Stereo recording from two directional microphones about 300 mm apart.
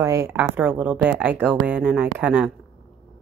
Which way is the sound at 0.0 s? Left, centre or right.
Centre.